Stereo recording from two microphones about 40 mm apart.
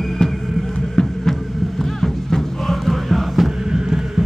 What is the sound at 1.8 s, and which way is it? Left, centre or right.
Music, centre.